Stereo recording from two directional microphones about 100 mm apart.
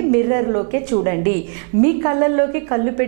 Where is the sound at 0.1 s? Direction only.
15° right (ahead or behind).